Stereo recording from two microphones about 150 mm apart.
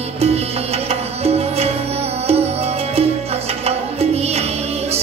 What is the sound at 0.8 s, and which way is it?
Music, 45° right (ahead or behind).